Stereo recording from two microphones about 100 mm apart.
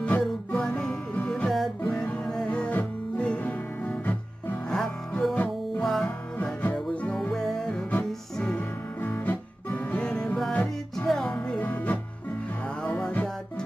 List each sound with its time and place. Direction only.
0.2 s music: 5° left (ahead or behind)
4.6 s music: 5° left (ahead or behind)
6.3 s music: 15° left (ahead or behind)
9.0 s music: 20° left (ahead or behind)